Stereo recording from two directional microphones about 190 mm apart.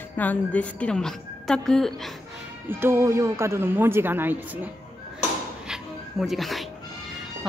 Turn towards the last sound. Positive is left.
turn(degrees=0)  # may be behind; listen again after turning